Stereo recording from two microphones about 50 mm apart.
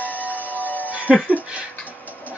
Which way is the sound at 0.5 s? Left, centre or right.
Left.